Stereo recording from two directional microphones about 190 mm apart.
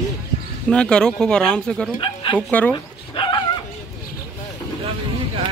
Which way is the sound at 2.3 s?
5° left (ahead or behind).